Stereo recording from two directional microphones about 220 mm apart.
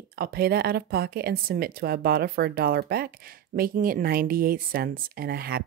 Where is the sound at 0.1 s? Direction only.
45° right (ahead or behind).